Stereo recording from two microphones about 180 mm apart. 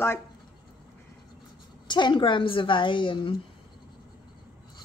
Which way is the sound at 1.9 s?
25° left (ahead or behind).